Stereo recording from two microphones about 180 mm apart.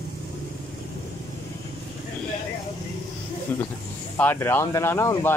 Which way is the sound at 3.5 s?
15° left (ahead or behind).